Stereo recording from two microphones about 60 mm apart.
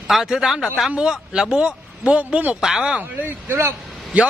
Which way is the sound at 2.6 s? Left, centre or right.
Centre.